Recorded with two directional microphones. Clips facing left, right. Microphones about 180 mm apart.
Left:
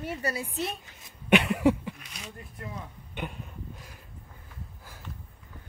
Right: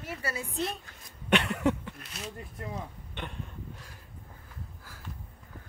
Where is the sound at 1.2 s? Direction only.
10° left (ahead or behind).